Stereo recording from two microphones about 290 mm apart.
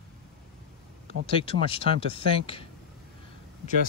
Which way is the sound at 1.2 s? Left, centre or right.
Centre.